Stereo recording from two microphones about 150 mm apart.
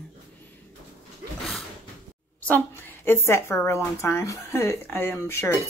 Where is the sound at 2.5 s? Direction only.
15° left (ahead or behind).